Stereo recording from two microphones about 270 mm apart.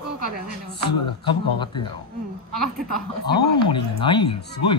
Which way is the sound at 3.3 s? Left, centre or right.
Centre.